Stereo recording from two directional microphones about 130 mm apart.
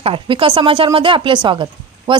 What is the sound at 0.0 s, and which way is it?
A woman's voice, 45° right (ahead or behind).